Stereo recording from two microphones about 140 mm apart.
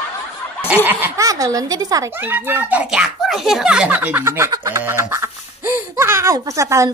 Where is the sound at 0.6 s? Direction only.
10° right (ahead or behind).